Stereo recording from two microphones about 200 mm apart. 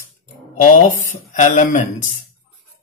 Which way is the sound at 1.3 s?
40° left (ahead or behind).